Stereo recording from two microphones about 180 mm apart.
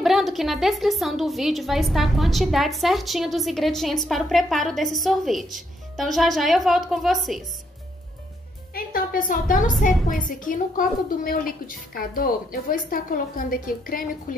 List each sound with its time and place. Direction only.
0.0 s a woman's voice: centre (ahead or behind)
8.7 s a sound: 50° left (ahead or behind)
10.0 s a woman's voice: 50° left (ahead or behind)